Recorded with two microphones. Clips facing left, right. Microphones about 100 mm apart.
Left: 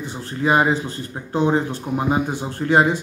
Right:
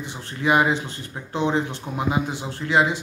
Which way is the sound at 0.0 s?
35° left (ahead or behind).